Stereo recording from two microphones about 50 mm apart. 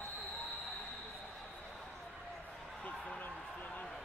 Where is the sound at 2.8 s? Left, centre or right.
Left.